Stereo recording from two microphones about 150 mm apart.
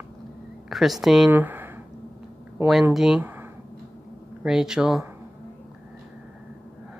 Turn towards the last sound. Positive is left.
turn(degrees=-5)  # may be behind; listen again after turning